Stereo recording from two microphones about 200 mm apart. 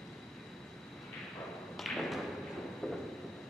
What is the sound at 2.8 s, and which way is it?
Train, centre (ahead or behind).